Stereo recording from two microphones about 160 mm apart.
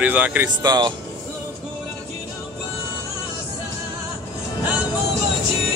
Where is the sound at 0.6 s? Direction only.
25° right (ahead or behind).